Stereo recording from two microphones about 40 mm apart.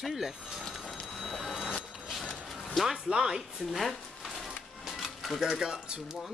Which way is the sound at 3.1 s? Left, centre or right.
Centre.